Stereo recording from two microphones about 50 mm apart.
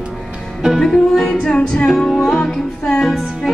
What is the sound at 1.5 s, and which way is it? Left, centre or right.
Music, centre.